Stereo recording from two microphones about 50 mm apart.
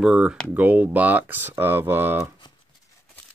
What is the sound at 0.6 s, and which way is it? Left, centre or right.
Speech, right.